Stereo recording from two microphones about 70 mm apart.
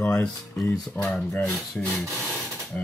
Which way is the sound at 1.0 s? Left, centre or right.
Centre.